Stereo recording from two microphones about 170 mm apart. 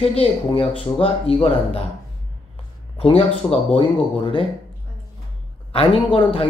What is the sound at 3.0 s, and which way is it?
A woman's voice, 35° left (ahead or behind).